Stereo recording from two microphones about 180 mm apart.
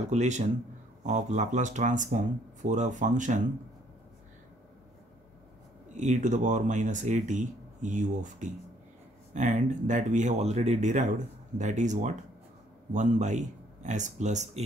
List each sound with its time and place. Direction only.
0.1 s speech: 40° right (ahead or behind)
5.9 s speech: 45° right (ahead or behind)